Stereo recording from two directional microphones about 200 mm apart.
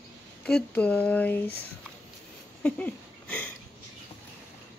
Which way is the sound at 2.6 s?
5° left (ahead or behind).